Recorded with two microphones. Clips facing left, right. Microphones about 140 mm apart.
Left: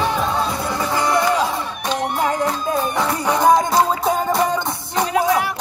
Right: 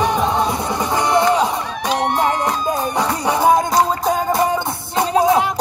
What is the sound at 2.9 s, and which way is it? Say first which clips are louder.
Music: right 1 dB; 10° right (ahead or behind).